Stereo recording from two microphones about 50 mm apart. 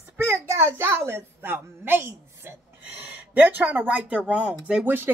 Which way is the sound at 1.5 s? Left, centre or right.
Right.